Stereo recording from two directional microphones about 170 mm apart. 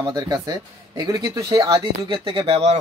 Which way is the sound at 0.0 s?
25° right (ahead or behind).